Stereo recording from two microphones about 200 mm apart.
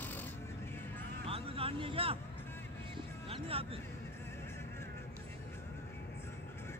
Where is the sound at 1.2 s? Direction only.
30° right (ahead or behind).